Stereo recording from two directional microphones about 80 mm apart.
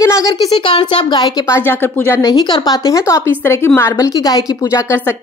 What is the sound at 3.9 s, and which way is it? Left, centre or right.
Speech, left.